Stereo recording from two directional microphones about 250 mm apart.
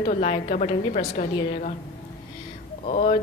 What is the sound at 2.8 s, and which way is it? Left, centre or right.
Speech, left.